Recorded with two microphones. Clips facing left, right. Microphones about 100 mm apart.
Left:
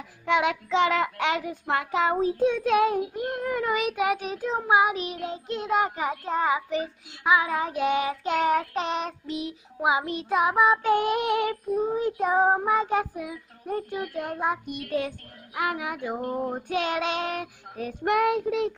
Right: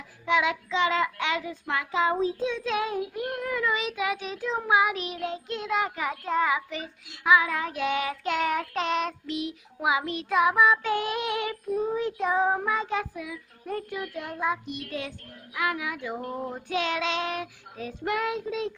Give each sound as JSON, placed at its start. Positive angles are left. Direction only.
{"t": 0.2, "sound": "child singing", "side_deg": 60}
{"t": 3.0, "sound": "child singing", "side_deg": 30}
{"t": 13.7, "sound": "child singing", "side_deg": 30}
{"t": 16.2, "sound": "female singing", "side_deg": 10}
{"t": 16.5, "sound": "child singing", "side_deg": 45}